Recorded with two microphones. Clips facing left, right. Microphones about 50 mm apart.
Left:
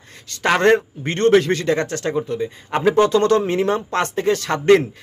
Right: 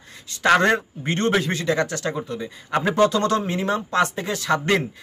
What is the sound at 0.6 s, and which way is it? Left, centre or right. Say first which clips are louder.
Speech: left 4 dB; left.